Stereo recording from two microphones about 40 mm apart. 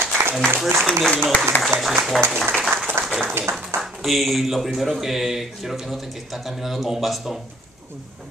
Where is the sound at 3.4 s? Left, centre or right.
Right.